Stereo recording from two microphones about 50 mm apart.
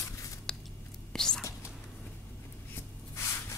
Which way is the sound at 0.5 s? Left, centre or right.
Centre.